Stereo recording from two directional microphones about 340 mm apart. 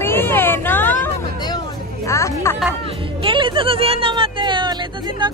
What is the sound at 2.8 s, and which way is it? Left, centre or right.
A woman's voice, centre.